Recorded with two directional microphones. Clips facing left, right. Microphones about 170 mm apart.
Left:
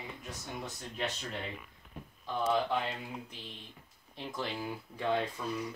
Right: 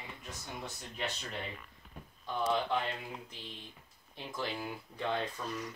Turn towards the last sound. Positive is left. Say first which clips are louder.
# left 3 dB
turn(degrees=10)  # may be behind; listen again after turning